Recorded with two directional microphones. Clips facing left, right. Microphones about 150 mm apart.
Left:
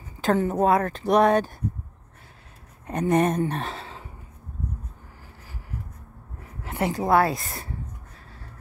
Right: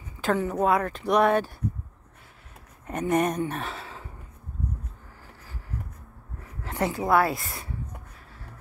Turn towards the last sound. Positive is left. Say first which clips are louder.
# left 2 dB
turn(degrees=40)  # may be behind; listen again after turning